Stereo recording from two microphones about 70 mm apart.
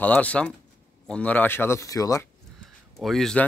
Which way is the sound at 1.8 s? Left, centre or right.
Left.